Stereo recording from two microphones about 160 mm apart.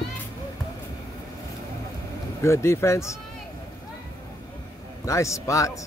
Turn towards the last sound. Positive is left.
turn(degrees=20)  # may be behind; listen again after turning